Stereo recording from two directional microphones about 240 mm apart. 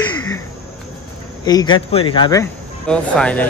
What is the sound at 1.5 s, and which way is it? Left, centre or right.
Speech, centre.